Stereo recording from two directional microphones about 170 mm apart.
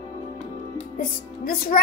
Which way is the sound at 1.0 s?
60° left (ahead or behind).